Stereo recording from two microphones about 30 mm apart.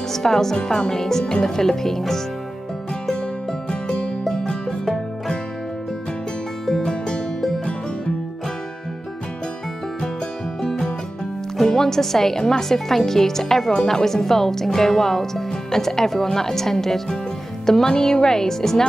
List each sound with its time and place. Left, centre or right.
0.1 s speech: centre
3.1 s music: left
6.8 s music: left
11.6 s speech: centre